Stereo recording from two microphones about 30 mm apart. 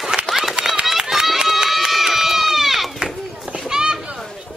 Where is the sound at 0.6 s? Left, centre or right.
Right.